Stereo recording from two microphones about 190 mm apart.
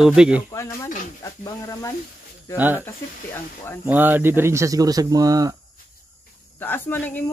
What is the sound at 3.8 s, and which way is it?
Speech, 10° right (ahead or behind).